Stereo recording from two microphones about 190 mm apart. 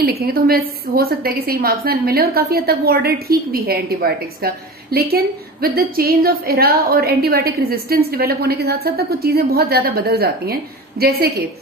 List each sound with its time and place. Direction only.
0.0 s a woman's voice: 55° right (ahead or behind)